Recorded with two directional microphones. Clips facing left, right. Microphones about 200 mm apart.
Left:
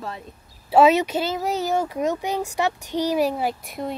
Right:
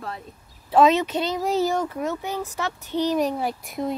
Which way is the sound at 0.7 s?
10° left (ahead or behind).